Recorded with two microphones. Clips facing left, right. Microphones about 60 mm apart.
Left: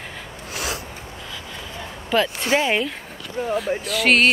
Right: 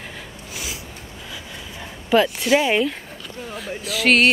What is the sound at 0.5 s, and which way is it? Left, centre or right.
Snort, left.